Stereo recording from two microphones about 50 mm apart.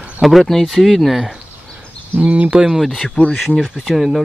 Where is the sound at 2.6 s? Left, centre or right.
Centre.